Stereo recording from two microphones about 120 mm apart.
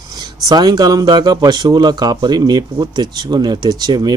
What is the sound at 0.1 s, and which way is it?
A man's voice, 35° right (ahead or behind).